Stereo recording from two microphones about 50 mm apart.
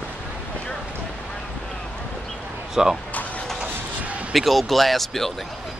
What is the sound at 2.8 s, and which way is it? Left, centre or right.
Speech, centre.